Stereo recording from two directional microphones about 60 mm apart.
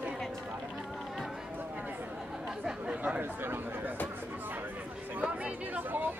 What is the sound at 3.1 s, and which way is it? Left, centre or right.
Speech, right.